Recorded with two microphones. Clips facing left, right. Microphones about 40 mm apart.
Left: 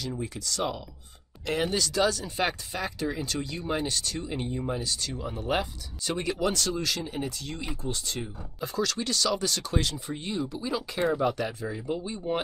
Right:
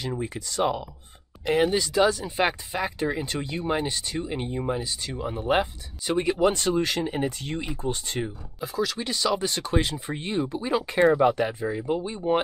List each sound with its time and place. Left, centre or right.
0.0 s speech: right
8.5 s speech: centre; by 12.4 s right